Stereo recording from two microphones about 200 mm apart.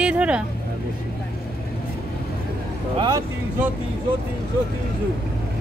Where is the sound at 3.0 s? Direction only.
20° right (ahead or behind).